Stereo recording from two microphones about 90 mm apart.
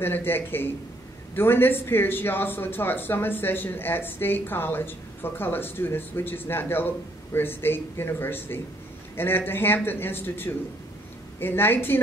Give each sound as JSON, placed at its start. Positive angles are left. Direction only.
{"t": 0.0, "sound": "a man's voice", "side_deg": 25}